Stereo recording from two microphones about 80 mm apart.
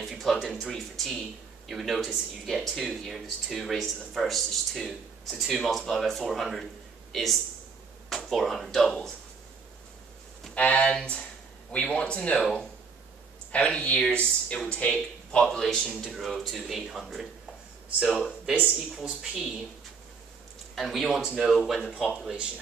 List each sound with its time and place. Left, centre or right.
0.0 s speech: centre
10.5 s speech: centre
15.4 s speech: centre
20.7 s speech: centre